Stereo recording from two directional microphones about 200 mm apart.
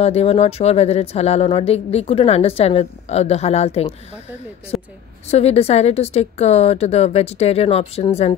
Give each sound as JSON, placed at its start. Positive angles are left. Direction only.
{"t": 0.0, "sound": "speech", "side_deg": 30}
{"t": 5.3, "sound": "speech", "side_deg": 30}